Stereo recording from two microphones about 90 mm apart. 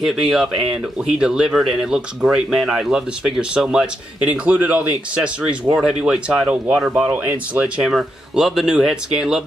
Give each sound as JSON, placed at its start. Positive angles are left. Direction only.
{"t": 0.0, "sound": "a man's voice", "side_deg": -5}
{"t": 7.8, "sound": "speech", "side_deg": -5}